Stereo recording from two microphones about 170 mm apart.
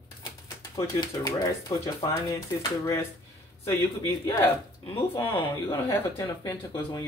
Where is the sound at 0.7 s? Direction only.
20° left (ahead or behind).